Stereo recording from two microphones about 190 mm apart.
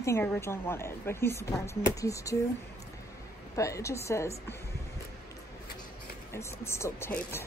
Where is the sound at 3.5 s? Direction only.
15° left (ahead or behind).